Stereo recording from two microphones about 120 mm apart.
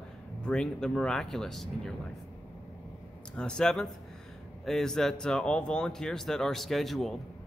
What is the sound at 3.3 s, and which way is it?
Speech, 5° left (ahead or behind).